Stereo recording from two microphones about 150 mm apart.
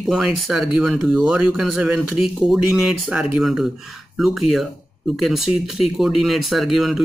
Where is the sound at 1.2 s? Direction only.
10° right (ahead or behind).